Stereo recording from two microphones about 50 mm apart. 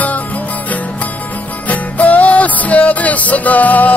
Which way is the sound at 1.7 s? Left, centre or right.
Left.